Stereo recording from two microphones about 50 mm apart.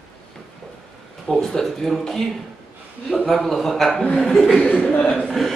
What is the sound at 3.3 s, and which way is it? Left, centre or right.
Speech, centre.